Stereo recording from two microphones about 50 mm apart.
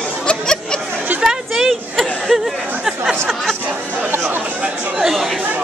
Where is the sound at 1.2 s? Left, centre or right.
Centre.